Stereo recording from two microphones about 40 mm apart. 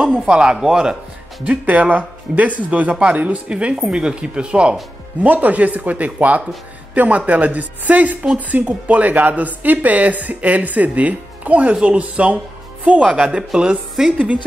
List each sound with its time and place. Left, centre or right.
0.3 s speech: centre
1.7 s speech: right
5.2 s speech: right
13.4 s speech: centre
14.1 s speech: right